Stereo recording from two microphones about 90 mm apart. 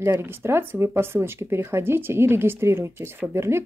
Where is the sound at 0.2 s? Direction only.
25° right (ahead or behind).